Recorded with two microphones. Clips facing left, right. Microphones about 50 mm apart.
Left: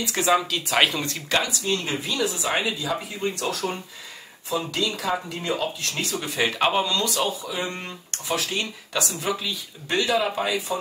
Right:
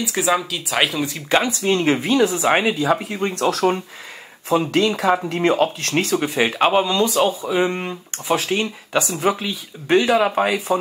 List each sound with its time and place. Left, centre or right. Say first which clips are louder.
0.0 s speech: right 2 dB; centre
1.3 s speech: right 6 dB; right
1.6 s speech: right 8 dB; right
4.5 s speech: right 8 dB; right
6.2 s speech: right 5 dB; centre; by 10.8 s right